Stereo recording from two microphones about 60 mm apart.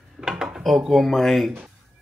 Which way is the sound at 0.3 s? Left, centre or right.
Centre.